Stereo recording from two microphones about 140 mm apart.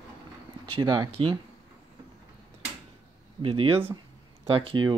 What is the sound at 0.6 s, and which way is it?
Speech, 35° right (ahead or behind).